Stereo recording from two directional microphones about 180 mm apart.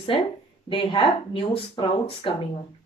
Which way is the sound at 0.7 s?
30° left (ahead or behind).